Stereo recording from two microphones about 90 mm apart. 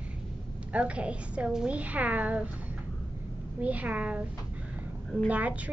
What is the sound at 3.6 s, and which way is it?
Speech, 15° right (ahead or behind).